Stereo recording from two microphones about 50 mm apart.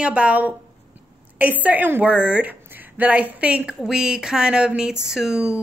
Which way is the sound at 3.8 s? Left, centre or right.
Centre.